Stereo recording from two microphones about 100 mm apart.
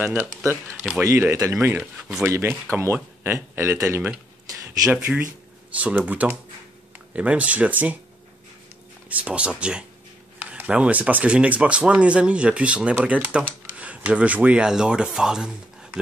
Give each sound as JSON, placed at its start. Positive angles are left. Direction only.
{"t": 0.0, "sound": "speech", "side_deg": -10}
{"t": 0.4, "sound": "speech", "side_deg": -25}
{"t": 2.0, "sound": "speech", "side_deg": -5}
{"t": 2.2, "sound": "speech", "side_deg": -30}
{"t": 4.9, "sound": "speech", "side_deg": -10}
{"t": 9.1, "sound": "speech", "side_deg": -10}